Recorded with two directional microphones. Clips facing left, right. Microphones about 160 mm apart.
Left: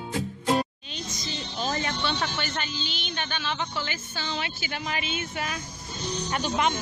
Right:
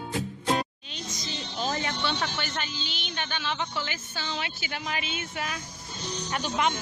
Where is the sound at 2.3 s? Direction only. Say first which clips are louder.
Left 2 dB; 5° right (ahead or behind).